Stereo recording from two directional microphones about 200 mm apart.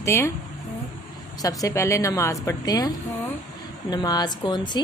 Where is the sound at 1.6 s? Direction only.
15° left (ahead or behind).